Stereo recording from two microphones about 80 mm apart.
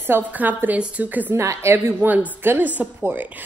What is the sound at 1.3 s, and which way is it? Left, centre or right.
A woman's voice, right.